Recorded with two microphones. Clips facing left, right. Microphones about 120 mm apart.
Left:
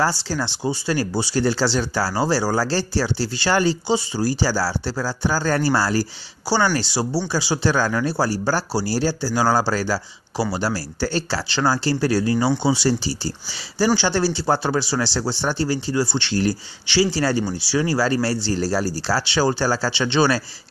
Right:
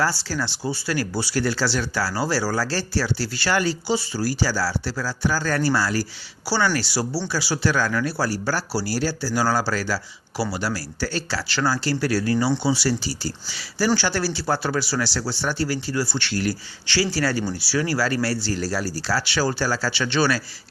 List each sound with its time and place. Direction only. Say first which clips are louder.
0.0 s speech: left 2 dB; 25° left (ahead or behind)